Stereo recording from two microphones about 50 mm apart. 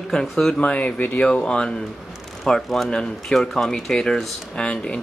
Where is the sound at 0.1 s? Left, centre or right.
Centre.